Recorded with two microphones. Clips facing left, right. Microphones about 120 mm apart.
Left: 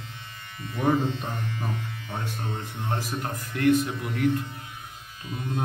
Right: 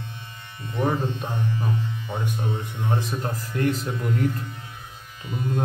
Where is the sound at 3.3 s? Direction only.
35° right (ahead or behind).